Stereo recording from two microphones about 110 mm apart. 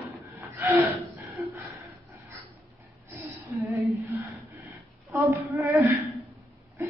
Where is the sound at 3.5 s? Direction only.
30° right (ahead or behind).